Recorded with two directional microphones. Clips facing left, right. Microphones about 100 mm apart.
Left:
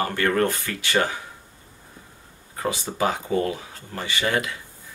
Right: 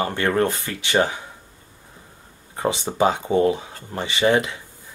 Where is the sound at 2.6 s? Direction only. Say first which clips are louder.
Right 5 dB; 25° right (ahead or behind).